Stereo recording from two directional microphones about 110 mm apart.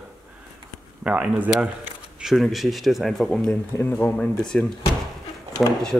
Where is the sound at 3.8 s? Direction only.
20° left (ahead or behind).